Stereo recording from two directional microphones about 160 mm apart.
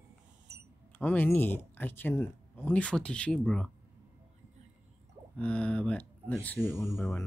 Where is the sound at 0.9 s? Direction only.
10° left (ahead or behind).